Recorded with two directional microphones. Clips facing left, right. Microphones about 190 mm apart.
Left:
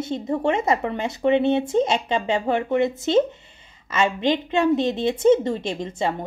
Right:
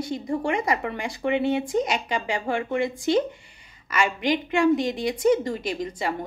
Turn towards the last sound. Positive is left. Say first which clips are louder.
# left 2 dB
turn(degrees=25)  # may be behind; listen again after turning